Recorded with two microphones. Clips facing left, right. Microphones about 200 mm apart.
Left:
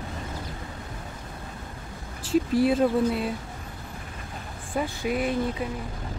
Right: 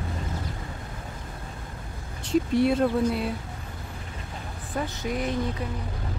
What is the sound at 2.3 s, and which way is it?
Speech, centre (ahead or behind).